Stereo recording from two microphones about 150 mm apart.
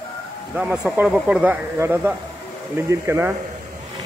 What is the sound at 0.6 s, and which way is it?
Speech, 5° right (ahead or behind).